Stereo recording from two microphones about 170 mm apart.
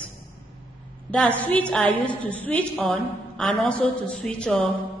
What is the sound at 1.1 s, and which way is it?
A woman's voice, 10° left (ahead or behind).